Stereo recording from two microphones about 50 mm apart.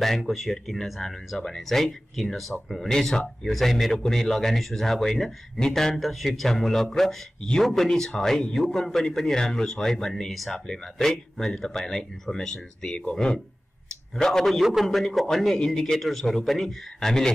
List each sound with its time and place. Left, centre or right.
0.2 s speech: centre
2.9 s speech: centre
14.4 s speech: centre
15.0 s speech: centre